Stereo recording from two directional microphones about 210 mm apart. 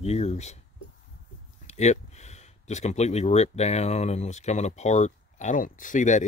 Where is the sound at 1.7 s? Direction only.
30° left (ahead or behind).